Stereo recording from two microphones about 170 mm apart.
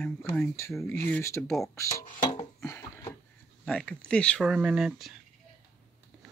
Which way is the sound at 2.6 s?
20° left (ahead or behind).